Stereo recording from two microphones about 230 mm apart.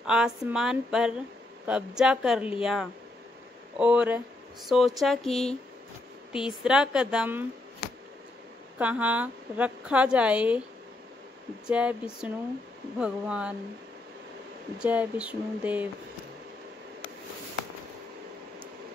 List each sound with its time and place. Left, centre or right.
0.0 s a woman's voice: centre
8.7 s a woman's voice: centre
11.6 s a woman's voice: centre
14.8 s a sound: centre